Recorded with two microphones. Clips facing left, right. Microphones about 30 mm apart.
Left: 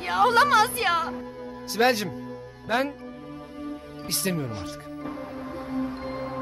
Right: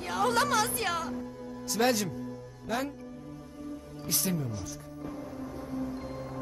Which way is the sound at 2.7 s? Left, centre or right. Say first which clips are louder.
Left 7 dB; left.